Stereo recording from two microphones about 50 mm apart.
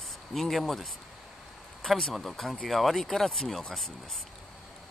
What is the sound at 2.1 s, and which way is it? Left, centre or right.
Speech, centre.